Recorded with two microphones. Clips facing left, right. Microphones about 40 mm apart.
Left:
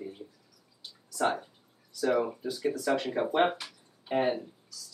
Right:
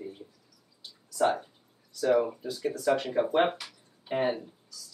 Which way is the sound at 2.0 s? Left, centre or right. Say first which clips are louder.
Right 3 dB; centre.